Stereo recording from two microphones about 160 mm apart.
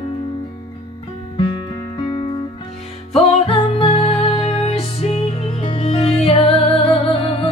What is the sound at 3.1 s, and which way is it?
Music, 35° left (ahead or behind).